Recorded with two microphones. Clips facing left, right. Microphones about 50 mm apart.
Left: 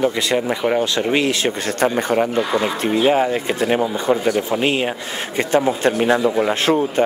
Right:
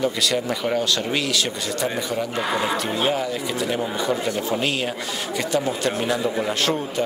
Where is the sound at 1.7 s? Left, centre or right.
Left.